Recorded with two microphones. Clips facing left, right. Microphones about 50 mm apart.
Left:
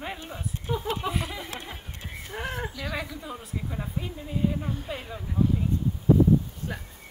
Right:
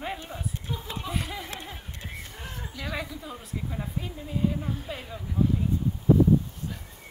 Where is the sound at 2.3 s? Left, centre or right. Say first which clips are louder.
Left 8 dB; left.